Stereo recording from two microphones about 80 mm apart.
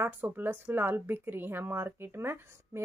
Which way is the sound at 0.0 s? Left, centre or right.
Right.